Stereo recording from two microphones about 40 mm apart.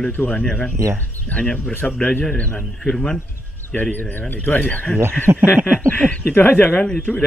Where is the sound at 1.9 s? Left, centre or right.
Centre.